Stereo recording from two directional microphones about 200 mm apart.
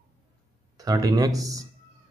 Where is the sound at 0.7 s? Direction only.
20° right (ahead or behind).